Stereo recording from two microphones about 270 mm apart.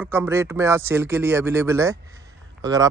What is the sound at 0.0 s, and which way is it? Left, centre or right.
Speech, centre.